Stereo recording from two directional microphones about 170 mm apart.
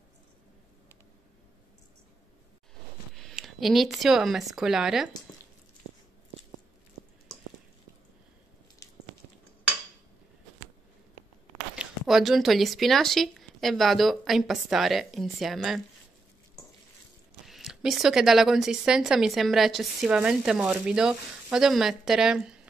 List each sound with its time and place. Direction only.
3.2 s speech: centre (ahead or behind)
8.8 s a sound: 20° left (ahead or behind)
11.7 s a woman's voice: 5° right (ahead or behind)
17.5 s a woman's voice: centre (ahead or behind)